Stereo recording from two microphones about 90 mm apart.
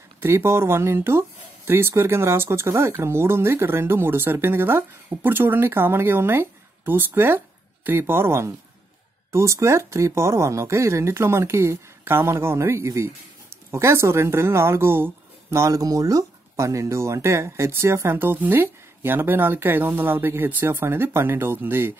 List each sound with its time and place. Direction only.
0.2 s speech: 30° right (ahead or behind)